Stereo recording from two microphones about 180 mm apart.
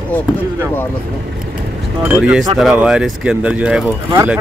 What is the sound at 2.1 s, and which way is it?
Speech, centre (ahead or behind).